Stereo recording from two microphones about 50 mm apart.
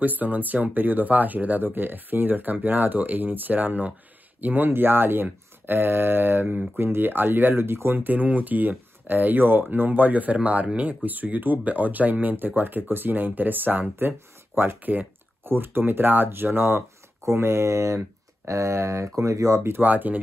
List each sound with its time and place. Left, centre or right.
0.0 s speech: right
17.2 s speech: right
19.8 s speech: right